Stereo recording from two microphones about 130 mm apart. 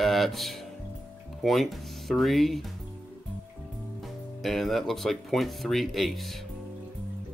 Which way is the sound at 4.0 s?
Centre (ahead or behind).